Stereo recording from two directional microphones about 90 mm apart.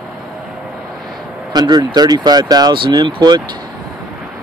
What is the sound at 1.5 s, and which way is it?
Speech, 45° right (ahead or behind).